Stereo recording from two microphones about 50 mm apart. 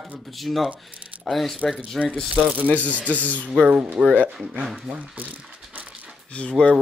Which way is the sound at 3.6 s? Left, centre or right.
Right.